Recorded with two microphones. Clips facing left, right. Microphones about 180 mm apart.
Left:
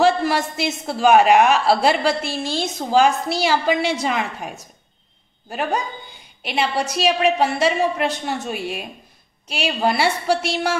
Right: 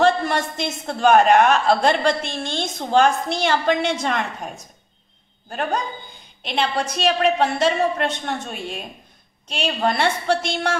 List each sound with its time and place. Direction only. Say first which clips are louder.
0.0 s a man's voice: left 1 dB; 5° left (ahead or behind)